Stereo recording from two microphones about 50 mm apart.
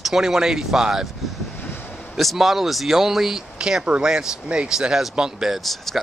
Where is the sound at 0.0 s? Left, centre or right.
Centre.